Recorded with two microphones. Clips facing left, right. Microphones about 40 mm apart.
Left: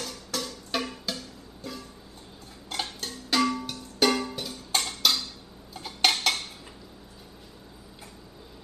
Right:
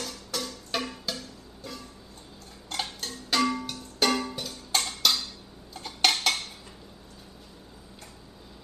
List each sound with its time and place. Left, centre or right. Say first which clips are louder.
0.0 s music: left 1 dB; centre